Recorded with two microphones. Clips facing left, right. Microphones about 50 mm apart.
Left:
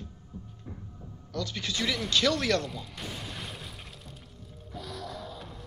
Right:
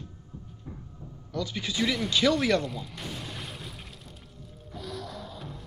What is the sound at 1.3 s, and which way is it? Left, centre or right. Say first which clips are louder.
Speech: right 2 dB; centre.